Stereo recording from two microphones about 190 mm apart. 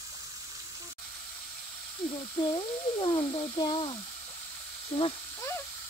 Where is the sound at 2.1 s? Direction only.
25° left (ahead or behind).